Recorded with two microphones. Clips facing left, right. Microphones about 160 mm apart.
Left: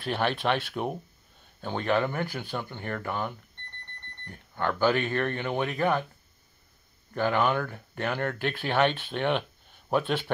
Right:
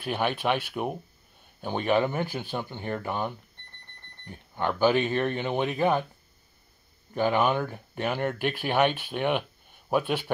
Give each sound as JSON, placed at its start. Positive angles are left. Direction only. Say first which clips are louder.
{"t": 0.0, "sound": "speech", "louder": "even", "side_deg": -5}
{"t": 7.2, "sound": "speech", "louder": "right 1 dB", "side_deg": -15}